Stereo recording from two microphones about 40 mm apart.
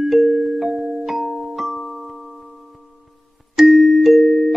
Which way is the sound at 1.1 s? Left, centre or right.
Centre.